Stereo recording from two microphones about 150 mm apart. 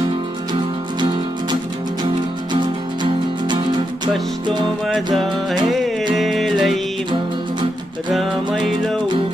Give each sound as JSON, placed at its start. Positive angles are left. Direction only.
{"t": 0.5, "sound": "music", "side_deg": -30}
{"t": 4.8, "sound": "music", "side_deg": 0}